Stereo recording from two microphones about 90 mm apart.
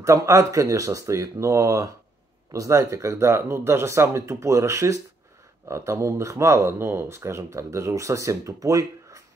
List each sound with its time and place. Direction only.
0.0 s speech: 35° right (ahead or behind)